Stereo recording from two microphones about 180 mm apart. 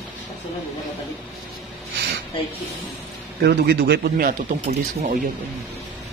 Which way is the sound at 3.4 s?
65° right (ahead or behind).